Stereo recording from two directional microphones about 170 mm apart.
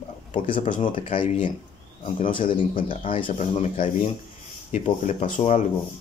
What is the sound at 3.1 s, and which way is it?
Speech, 30° left (ahead or behind).